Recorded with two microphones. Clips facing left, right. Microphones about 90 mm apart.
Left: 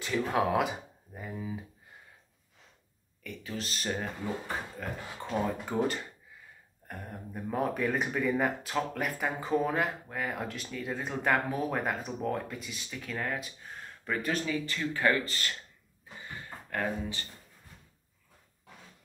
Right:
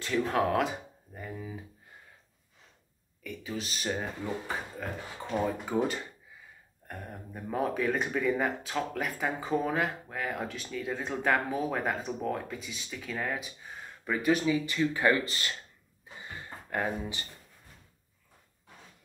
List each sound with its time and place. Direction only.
0.0 s speech: 5° left (ahead or behind)
3.3 s speech: 5° right (ahead or behind)
16.2 s a sound: 20° right (ahead or behind)